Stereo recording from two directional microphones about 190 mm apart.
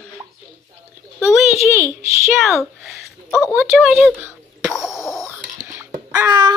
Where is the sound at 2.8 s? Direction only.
Centre (ahead or behind).